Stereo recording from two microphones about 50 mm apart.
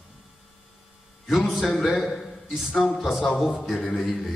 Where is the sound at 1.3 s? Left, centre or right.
Centre.